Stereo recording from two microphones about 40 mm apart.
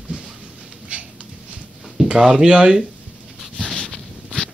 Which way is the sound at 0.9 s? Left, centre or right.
Right.